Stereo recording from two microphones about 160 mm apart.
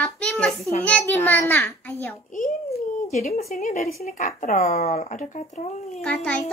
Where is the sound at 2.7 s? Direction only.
45° left (ahead or behind).